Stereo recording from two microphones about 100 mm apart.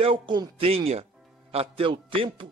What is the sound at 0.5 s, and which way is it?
A man's voice, 75° right (ahead or behind).